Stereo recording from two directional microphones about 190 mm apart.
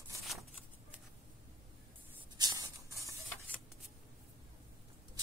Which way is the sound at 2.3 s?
20° right (ahead or behind).